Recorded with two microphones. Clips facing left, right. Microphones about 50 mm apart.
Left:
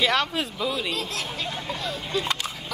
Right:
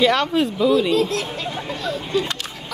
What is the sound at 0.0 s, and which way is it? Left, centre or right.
Speech, centre.